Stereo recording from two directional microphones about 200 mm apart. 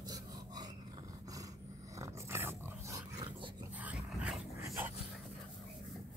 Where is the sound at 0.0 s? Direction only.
20° right (ahead or behind).